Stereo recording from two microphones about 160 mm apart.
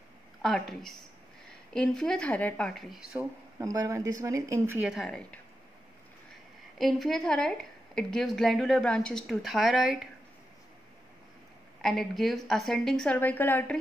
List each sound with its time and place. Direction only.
0.4 s speech: centre (ahead or behind)
3.1 s speech: 10° right (ahead or behind)
3.6 s speech: 20° right (ahead or behind)
4.8 s speech: centre (ahead or behind)
6.8 s speech: centre (ahead or behind)
11.8 s speech: centre (ahead or behind)